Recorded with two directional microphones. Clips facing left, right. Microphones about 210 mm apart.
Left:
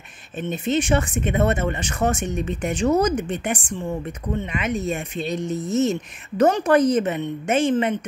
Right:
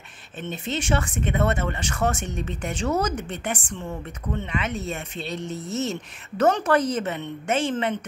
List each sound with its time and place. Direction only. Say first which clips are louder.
0.4 s speech: left 7 dB; 15° left (ahead or behind)